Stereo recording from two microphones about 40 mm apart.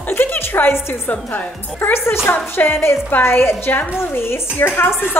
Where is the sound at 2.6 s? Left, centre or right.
Left.